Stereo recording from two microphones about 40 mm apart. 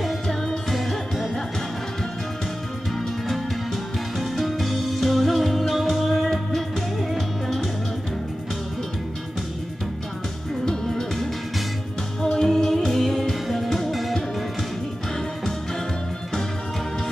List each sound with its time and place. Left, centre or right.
0.0 s music: centre
4.2 s music: centre
10.6 s music: centre